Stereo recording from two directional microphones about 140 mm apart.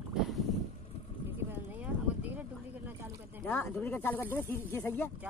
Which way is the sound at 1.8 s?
10° right (ahead or behind).